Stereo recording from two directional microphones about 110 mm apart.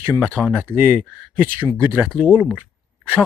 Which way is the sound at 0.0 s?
15° right (ahead or behind).